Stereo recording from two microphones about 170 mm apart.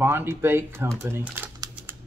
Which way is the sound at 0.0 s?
15° right (ahead or behind).